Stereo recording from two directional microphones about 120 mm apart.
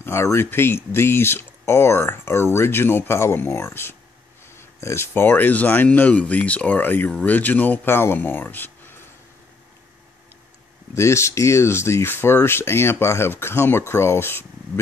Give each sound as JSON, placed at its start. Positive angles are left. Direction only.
{"t": 0.0, "sound": "speech", "side_deg": 20}
{"t": 11.0, "sound": "speech", "side_deg": 25}